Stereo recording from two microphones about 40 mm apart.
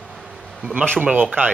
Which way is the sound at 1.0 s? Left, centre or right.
Right.